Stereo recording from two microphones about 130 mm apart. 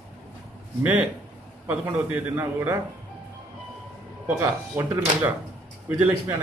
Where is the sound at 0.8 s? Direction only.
10° right (ahead or behind).